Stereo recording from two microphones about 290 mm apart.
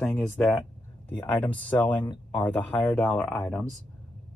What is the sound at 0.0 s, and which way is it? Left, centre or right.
Speech, centre.